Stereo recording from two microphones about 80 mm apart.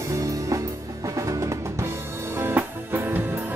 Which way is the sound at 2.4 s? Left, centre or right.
Right.